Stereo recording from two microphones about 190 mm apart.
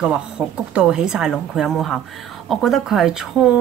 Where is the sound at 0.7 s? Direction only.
5° right (ahead or behind).